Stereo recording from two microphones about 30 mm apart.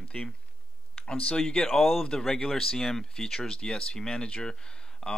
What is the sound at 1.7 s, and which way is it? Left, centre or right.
Speech, left.